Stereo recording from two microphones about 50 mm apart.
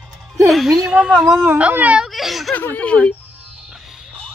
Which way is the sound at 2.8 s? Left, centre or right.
Left.